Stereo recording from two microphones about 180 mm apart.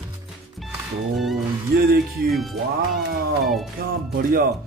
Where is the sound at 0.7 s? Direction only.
Centre (ahead or behind).